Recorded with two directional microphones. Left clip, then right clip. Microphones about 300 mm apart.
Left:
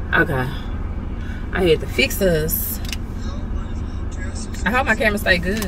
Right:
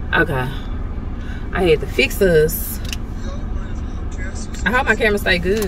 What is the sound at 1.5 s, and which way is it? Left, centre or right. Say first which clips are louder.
Speech: right 2 dB; centre.